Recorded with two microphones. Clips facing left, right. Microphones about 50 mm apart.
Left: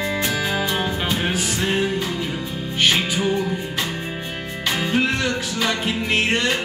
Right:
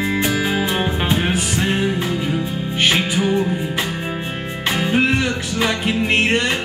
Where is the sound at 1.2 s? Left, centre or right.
Centre.